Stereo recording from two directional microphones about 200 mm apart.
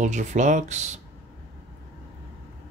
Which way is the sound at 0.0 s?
40° right (ahead or behind).